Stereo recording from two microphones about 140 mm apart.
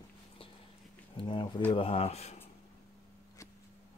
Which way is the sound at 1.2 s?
35° left (ahead or behind).